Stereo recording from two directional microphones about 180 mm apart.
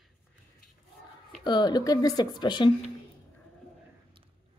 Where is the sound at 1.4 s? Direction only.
25° left (ahead or behind).